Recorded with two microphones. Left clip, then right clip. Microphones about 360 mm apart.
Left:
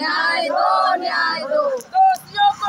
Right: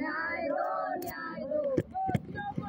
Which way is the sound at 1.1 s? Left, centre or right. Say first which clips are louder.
Left 16 dB; right.